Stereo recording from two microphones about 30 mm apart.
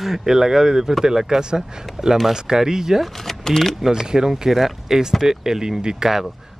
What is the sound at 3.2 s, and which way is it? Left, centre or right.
Speech, centre.